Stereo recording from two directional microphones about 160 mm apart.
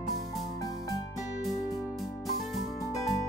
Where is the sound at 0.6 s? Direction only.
20° left (ahead or behind).